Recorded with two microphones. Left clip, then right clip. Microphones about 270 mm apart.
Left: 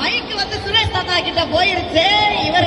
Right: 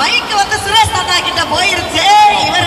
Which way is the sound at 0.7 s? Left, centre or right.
Right.